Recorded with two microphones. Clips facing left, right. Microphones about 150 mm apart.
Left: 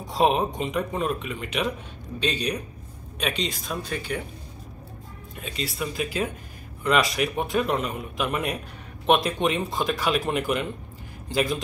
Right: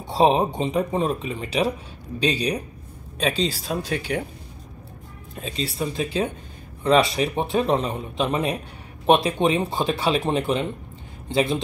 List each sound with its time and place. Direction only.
0.0 s speech: 30° right (ahead or behind)
5.3 s a man's voice: 30° right (ahead or behind)